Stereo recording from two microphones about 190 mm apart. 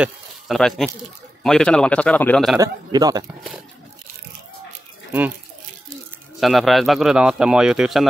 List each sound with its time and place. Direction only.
0.0 s a man's voice: centre (ahead or behind)
2.6 s a man's voice: 20° right (ahead or behind)
6.4 s a man's voice: centre (ahead or behind)